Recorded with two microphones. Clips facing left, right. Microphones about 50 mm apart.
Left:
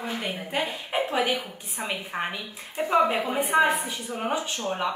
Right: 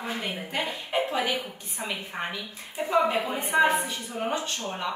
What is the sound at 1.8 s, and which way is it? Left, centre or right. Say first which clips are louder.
Speech: left 2 dB; centre.